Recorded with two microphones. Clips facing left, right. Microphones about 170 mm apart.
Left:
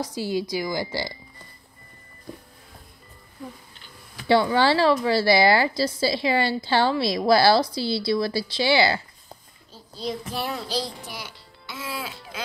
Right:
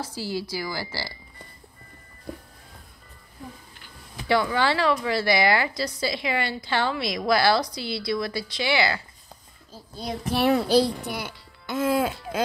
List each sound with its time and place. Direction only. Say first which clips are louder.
0.0 s a woman's voice: left 4 dB; 15° left (ahead or behind)
4.3 s a woman's voice: left 4 dB; 30° left (ahead or behind)
9.9 s a child's voice: right 3 dB; 65° right (ahead or behind); by 12.4 s 50° right (ahead or behind)